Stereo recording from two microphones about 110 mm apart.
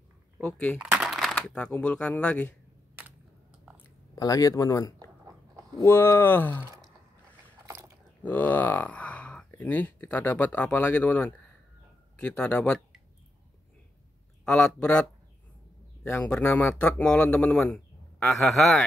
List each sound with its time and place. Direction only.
0.4 s a man's voice: 10° left (ahead or behind)
0.7 s speech: 5° right (ahead or behind); by 2.5 s 10° left (ahead or behind)
4.1 s speech: 35° left (ahead or behind); by 6.6 s 20° left (ahead or behind)
8.2 s a sound: 15° left (ahead or behind)
9.6 s a man's voice: 15° left (ahead or behind)
14.4 s a man's voice: 10° left (ahead or behind)